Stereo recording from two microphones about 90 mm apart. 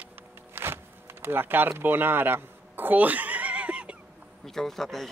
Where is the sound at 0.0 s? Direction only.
25° right (ahead or behind).